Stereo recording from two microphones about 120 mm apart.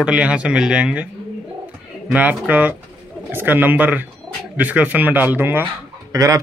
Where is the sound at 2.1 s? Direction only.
10° right (ahead or behind); by 6.4 s 25° right (ahead or behind).